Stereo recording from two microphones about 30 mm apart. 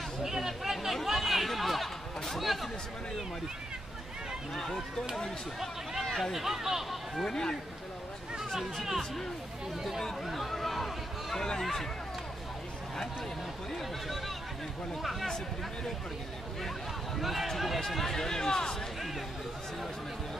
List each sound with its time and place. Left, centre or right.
0.2 s chatter: centre
2.2 s a sound: centre
4.6 s speech: centre
6.3 s speech: centre
7.2 s speech: left
8.8 s speech: centre
10.2 s a sound: centre
13.7 s speech: centre
15.2 s speech: centre
17.2 s speech: centre
17.7 s speech: centre